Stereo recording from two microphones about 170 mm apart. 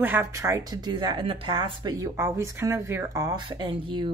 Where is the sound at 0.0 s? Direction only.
10° right (ahead or behind).